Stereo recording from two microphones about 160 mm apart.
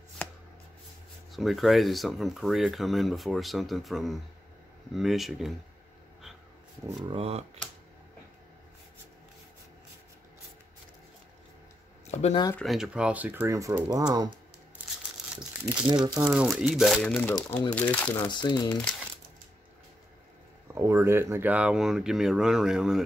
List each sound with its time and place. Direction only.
1.3 s speech: centre (ahead or behind)
6.9 s speech: 25° right (ahead or behind)
7.2 s speech: 40° right (ahead or behind)
12.1 s a sound: 45° left (ahead or behind)
12.5 s speech: centre (ahead or behind); by 14.3 s 25° right (ahead or behind)
16.0 s speech: 5° right (ahead or behind)
18.2 s speech: 25° left (ahead or behind)
20.6 s speech: 15° right (ahead or behind)